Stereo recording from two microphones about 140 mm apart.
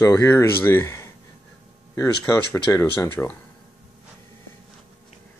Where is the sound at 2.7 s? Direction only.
20° left (ahead or behind).